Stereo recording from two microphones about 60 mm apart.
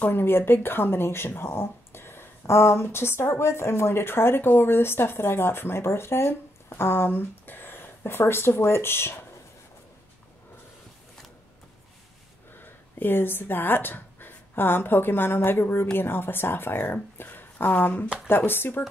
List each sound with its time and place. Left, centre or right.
0.0 s speech: left
12.5 s speech: left
18.0 s speech: centre
18.3 s speech: left